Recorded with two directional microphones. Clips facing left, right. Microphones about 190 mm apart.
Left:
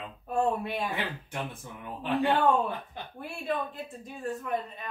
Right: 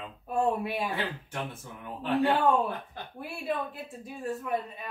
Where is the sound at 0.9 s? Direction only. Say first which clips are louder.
Right 1 dB; 15° left (ahead or behind).